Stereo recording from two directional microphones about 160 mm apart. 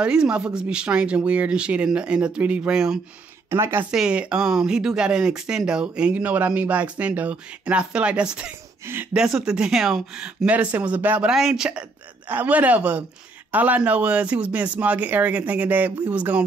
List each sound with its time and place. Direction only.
0.0 s speech: 5° right (ahead or behind)
3.4 s speech: 15° right (ahead or behind)
3.9 s speech: 5° right (ahead or behind)